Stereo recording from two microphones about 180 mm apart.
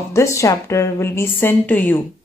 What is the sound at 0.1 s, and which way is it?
A woman's voice, 15° left (ahead or behind).